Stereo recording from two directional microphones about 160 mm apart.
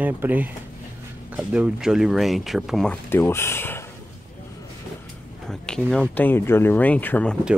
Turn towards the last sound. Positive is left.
turn(degrees=10)  # may be behind; listen again after turning